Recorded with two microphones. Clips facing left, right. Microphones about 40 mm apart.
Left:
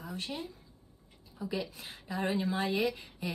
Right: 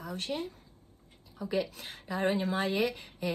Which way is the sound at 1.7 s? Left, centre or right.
Right.